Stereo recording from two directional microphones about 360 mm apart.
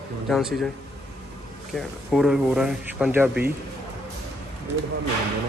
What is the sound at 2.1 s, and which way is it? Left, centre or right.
Speech, centre.